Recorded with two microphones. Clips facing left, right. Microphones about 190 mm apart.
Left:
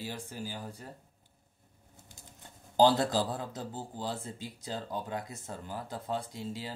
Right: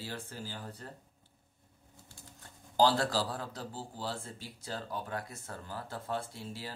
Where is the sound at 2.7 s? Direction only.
20° left (ahead or behind).